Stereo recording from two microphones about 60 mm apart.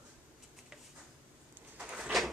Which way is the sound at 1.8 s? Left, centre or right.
Centre.